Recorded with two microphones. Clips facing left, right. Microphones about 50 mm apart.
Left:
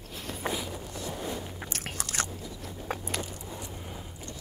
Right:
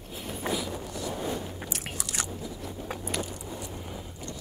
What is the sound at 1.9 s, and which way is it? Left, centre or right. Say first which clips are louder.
Biting: left 4 dB; left.